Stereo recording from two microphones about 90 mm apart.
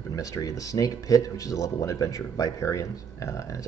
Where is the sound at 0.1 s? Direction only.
40° left (ahead or behind).